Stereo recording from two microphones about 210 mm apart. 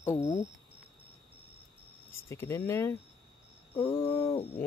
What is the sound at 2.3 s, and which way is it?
Speech, 15° left (ahead or behind).